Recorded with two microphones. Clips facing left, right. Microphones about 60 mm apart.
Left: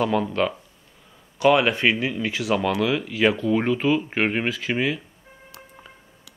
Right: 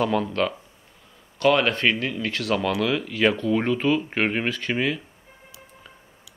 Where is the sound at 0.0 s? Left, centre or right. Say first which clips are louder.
Left 1 dB; centre.